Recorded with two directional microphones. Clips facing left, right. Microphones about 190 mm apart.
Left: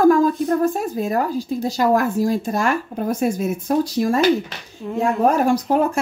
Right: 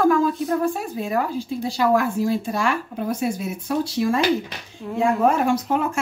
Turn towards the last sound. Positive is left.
turn(degrees=40)  # may be behind; listen again after turning